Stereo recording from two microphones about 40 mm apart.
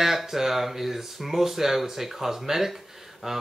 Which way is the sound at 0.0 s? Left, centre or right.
Centre.